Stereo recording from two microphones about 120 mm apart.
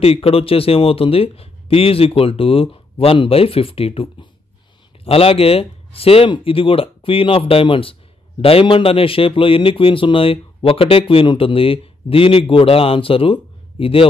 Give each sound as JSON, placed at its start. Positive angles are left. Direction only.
{"t": 0.0, "sound": "speech", "side_deg": 55}